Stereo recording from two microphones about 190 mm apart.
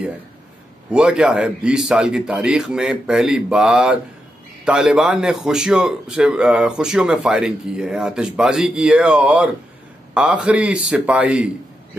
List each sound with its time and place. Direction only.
0.8 s a man's voice: 5° right (ahead or behind)